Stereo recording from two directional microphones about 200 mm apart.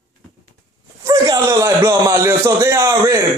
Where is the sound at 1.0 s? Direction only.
20° right (ahead or behind).